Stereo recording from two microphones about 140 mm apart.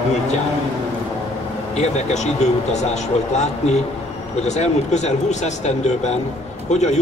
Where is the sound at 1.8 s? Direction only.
55° left (ahead or behind).